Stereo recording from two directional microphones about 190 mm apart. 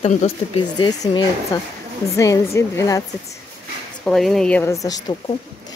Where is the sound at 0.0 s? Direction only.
30° left (ahead or behind).